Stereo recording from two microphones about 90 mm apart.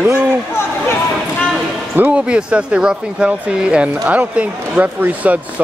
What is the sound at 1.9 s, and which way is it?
Speech, 15° right (ahead or behind).